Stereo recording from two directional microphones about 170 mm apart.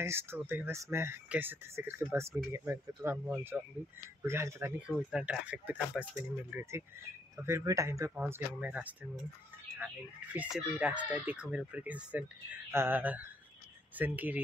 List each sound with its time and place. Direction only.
0.0 s speech: 15° right (ahead or behind)
10.3 s speech: 10° right (ahead or behind)